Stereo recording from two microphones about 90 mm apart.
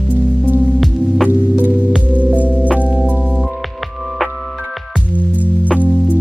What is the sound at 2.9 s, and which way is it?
Music, 5° left (ahead or behind).